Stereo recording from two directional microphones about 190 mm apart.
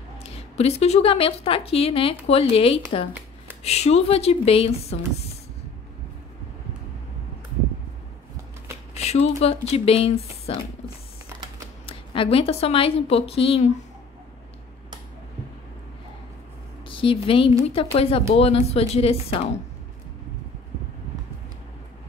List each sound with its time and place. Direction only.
0.2 s speech: 35° left (ahead or behind)
3.1 s a sound: 10° right (ahead or behind)
3.6 s speech: 35° left (ahead or behind)
8.9 s speech: 35° left (ahead or behind)
11.8 s speech: 30° left (ahead or behind)
16.8 s speech: 30° left (ahead or behind)